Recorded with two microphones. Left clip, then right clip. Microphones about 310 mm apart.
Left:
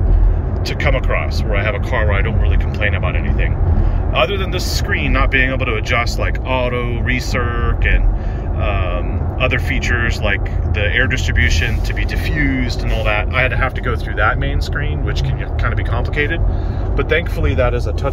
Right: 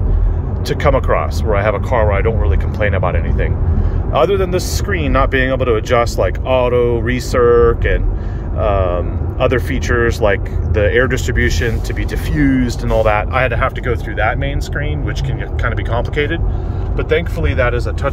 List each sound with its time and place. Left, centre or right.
0.8 s speech: centre